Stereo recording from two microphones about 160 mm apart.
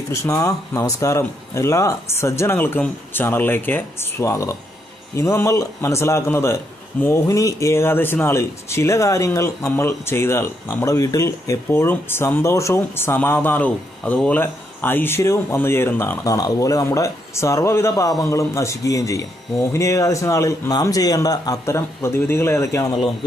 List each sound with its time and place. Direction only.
0.1 s a man's voice: 20° left (ahead or behind)